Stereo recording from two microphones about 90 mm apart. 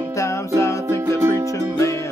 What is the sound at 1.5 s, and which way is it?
Music, 35° left (ahead or behind).